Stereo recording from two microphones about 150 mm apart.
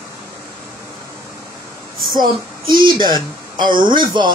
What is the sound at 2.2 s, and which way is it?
Female singing, 30° right (ahead or behind).